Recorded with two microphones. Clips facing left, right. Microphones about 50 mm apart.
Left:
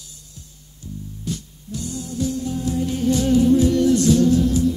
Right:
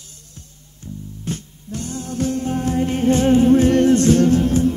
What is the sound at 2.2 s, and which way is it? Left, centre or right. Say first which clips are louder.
Music: right 3 dB; right.